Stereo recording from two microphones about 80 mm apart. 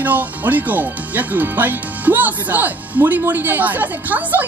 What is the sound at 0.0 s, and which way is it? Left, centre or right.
Speech, right.